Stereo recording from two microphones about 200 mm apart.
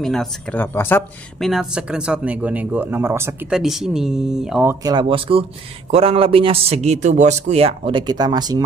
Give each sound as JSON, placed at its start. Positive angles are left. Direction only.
{"t": 0.0, "sound": "speech", "side_deg": 5}
{"t": 1.5, "sound": "speech", "side_deg": -5}
{"t": 4.6, "sound": "speech", "side_deg": -20}